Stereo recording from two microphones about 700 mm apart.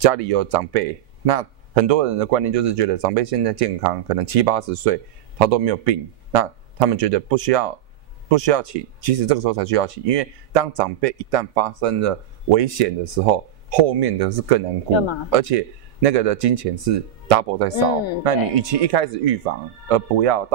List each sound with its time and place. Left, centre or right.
0.0 s speech: right